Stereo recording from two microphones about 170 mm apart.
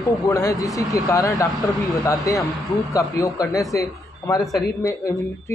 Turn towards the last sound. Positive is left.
turn(degrees=20)  # may be behind; listen again after turning